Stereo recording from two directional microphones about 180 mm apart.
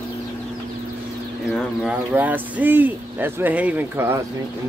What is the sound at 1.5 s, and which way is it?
Speech, 5° left (ahead or behind).